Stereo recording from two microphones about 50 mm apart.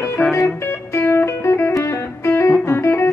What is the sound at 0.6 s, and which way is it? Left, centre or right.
Music, left.